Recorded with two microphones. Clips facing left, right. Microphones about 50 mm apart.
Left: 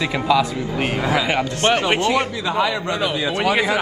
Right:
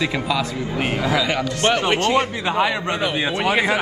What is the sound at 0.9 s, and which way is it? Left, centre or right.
Speech, left.